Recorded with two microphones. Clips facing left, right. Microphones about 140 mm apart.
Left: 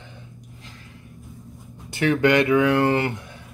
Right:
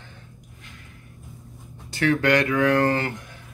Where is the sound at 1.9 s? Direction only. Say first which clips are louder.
Left 2 dB; 20° left (ahead or behind).